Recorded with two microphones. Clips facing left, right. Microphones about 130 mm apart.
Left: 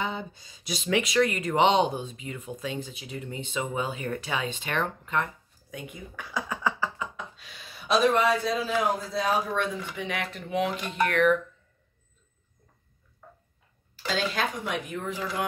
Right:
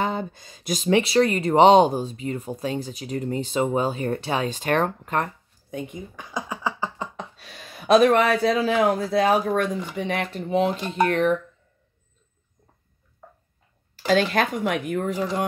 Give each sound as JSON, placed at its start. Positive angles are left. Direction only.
{"t": 0.0, "sound": "speech", "side_deg": -50}
{"t": 5.7, "sound": "speech", "side_deg": -25}
{"t": 7.0, "sound": "speech", "side_deg": -40}
{"t": 9.9, "sound": "speech", "side_deg": -35}
{"t": 14.0, "sound": "speech", "side_deg": -55}